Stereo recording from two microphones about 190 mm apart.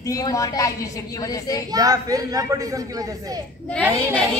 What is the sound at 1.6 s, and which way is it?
Speech, 20° right (ahead or behind).